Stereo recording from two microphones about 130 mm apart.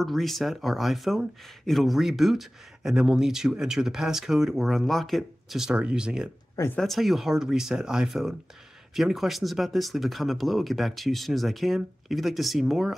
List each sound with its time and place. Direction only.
0.0 s speech: centre (ahead or behind)
6.5 s speech: 20° left (ahead or behind)
6.8 s speech: centre (ahead or behind)